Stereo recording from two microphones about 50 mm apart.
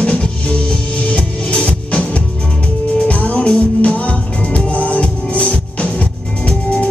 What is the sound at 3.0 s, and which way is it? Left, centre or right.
Music, left.